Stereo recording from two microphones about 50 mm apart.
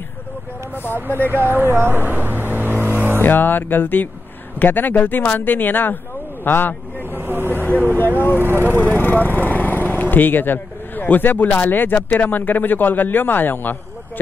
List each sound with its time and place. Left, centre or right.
1.2 s speech: right
2.1 s vehicle: right
3.2 s a man's voice: left
7.1 s a sound: right
8.4 s speech: right
8.7 s vehicle: left
10.1 s a man's voice: left